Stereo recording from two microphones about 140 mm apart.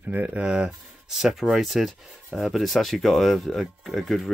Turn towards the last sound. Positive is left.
turn(degrees=0)  # may be behind; listen again after turning